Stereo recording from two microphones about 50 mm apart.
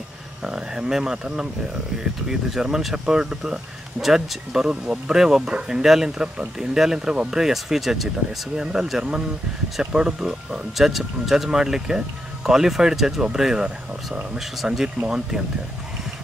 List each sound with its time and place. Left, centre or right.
0.4 s speech: centre
9.9 s speech: centre